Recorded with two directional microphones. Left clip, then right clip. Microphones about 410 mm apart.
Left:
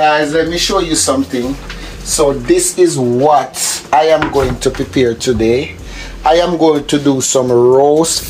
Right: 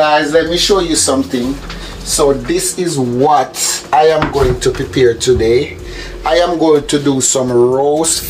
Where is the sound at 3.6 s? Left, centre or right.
Centre.